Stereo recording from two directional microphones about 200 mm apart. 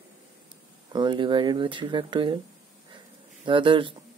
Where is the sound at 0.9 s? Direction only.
25° right (ahead or behind).